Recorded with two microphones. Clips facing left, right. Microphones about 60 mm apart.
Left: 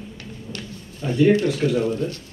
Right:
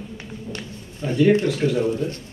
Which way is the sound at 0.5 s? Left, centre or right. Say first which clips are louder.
Right 1 dB; right.